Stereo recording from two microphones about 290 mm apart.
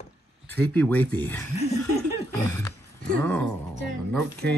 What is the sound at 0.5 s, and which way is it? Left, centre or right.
Speech, centre.